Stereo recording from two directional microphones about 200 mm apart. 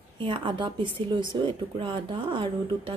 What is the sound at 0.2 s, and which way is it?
Speech, 25° right (ahead or behind).